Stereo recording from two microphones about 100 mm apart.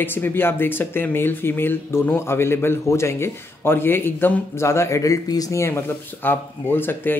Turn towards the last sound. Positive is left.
turn(degrees=20)  # may be behind; listen again after turning